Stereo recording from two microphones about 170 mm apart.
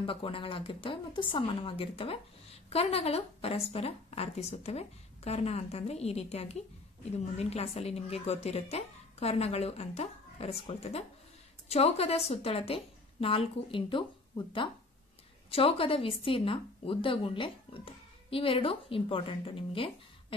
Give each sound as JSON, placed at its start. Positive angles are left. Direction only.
{"t": 0.0, "sound": "speech", "side_deg": 30}